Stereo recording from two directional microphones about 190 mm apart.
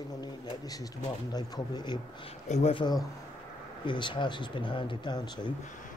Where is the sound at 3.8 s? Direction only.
25° left (ahead or behind).